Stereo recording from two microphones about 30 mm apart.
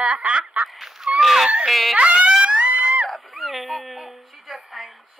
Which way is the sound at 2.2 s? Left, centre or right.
Right.